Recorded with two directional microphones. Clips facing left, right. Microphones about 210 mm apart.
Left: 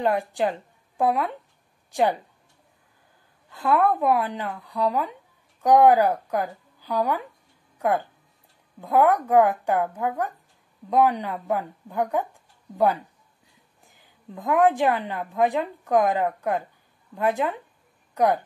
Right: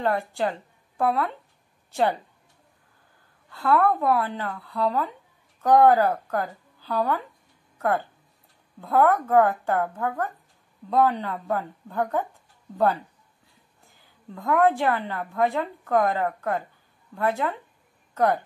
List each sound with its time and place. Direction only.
0.0 s a woman's voice: 15° left (ahead or behind)
3.4 s a woman's voice: 15° left (ahead or behind)